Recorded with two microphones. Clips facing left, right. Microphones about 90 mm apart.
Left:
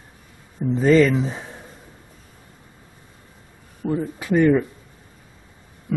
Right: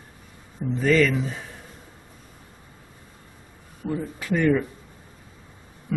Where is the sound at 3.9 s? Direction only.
20° left (ahead or behind).